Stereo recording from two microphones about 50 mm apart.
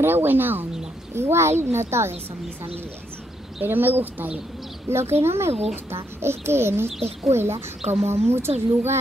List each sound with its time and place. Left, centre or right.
0.0 s a woman's voice: right
1.1 s speech: right
3.6 s speech: right
4.8 s speech: right